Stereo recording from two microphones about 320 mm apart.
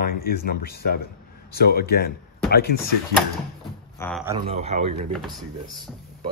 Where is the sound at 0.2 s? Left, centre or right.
Left.